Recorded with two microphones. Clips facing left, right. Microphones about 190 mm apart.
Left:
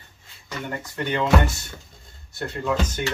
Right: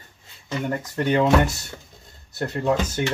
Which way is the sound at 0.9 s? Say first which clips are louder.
Right 5 dB; 35° right (ahead or behind).